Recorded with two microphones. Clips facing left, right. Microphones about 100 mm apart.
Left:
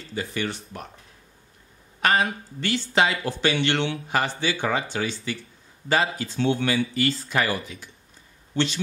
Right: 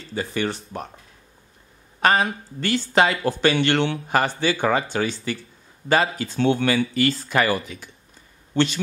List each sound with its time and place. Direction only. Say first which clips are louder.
0.1 s speech: right 4 dB; 35° right (ahead or behind)
2.0 s speech: right 3 dB; 35° right (ahead or behind); by 6.8 s 65° right (ahead or behind)
7.0 s speech: right 3 dB; 75° right (ahead or behind)